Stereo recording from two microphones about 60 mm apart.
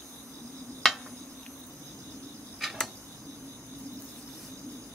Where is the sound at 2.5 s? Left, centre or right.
Centre.